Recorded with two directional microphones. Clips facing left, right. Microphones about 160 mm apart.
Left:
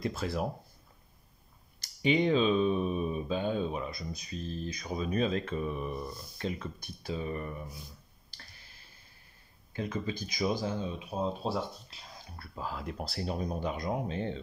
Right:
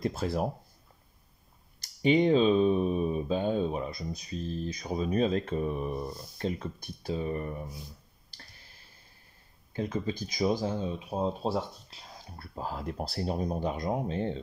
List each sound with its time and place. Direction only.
0.0 s speech: 40° right (ahead or behind)
2.0 s speech: 40° right (ahead or behind)
9.8 s speech: 35° right (ahead or behind)
12.4 s speech: 40° right (ahead or behind)